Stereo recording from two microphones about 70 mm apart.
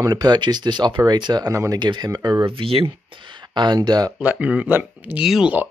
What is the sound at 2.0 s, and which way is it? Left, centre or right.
Speech, right.